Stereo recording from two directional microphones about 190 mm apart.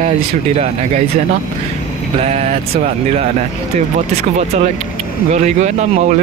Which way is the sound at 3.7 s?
35° right (ahead or behind).